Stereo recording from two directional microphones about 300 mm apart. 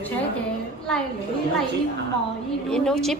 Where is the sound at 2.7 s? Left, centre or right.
Centre.